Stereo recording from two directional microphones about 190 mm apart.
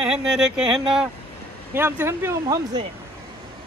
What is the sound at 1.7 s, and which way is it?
Speech, 10° right (ahead or behind).